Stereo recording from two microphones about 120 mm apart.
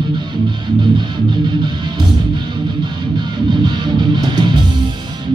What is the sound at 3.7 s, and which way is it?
Music, 40° right (ahead or behind).